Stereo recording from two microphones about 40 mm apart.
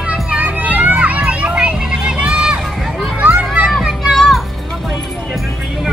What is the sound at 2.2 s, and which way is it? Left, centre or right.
Run, right.